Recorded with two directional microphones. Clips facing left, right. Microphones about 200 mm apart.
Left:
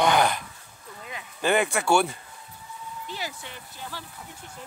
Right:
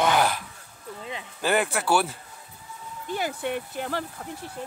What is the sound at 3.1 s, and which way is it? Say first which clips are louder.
Speech: right 11 dB; 55° right (ahead or behind).